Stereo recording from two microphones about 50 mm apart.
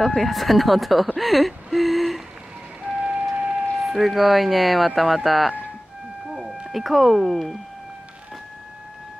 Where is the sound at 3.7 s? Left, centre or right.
Centre.